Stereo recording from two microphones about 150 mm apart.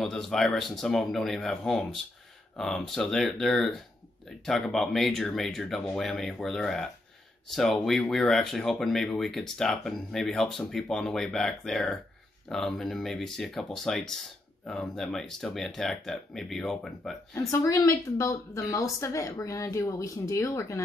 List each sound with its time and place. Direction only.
0.0 s speech: 5° left (ahead or behind)
17.3 s speech: 20° left (ahead or behind)